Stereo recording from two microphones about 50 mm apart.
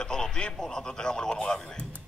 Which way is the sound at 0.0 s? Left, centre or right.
Centre.